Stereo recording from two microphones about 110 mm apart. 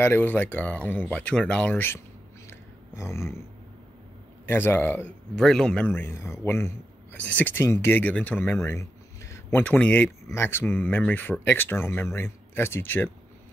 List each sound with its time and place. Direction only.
0.0 s speech: 20° left (ahead or behind)
3.0 s speech: 25° left (ahead or behind)
4.5 s speech: 20° left (ahead or behind)
5.3 s speech: 5° left (ahead or behind)
5.9 s speech: 20° left (ahead or behind)